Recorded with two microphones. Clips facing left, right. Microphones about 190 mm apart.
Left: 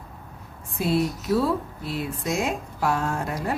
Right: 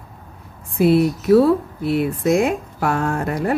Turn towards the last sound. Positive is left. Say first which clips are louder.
# right 6 dB
turn(degrees=-60)  # may be behind; listen again after turning